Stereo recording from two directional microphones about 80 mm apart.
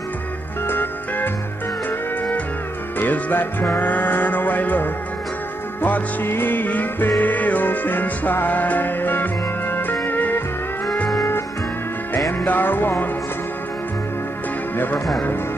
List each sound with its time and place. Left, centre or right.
0.7 s music: left
3.0 s music: left
12.4 s music: left